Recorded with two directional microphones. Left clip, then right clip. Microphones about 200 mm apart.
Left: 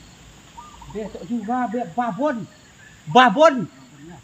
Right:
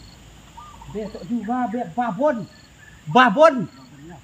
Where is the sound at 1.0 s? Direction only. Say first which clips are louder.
Even; centre (ahead or behind).